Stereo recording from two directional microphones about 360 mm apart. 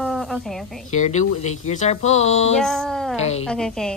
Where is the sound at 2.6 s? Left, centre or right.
Centre.